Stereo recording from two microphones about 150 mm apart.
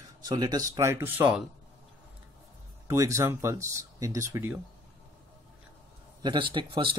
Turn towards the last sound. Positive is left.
turn(degrees=-35)  # may be behind; listen again after turning